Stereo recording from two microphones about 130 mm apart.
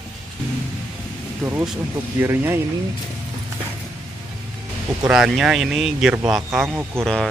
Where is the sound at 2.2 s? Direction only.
20° right (ahead or behind).